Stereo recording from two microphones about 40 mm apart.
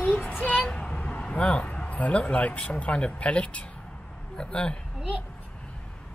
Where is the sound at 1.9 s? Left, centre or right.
Left.